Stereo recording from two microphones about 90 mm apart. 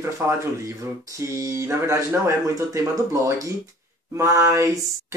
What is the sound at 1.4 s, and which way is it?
Speech, 30° right (ahead or behind).